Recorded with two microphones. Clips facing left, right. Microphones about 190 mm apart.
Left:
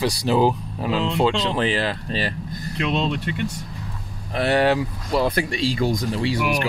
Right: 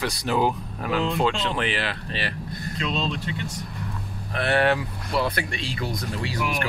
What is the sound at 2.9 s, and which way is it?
Speech, 60° left (ahead or behind).